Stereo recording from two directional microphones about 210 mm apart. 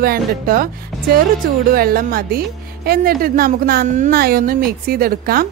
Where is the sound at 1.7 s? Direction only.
45° right (ahead or behind).